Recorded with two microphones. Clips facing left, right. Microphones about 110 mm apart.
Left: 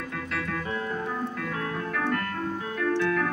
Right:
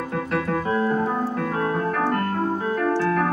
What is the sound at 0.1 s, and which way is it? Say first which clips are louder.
Keyboard: right 9 dB; 35° right (ahead or behind).